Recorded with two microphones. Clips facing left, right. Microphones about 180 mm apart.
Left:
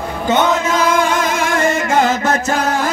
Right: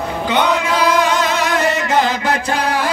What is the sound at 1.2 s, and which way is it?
Chant, 50° left (ahead or behind).